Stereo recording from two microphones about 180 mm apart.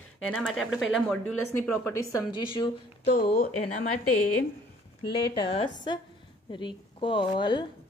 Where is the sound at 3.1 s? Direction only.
55° left (ahead or behind).